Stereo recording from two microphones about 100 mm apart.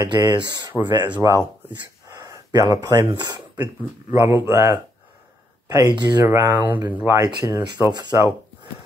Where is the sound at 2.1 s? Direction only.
35° right (ahead or behind).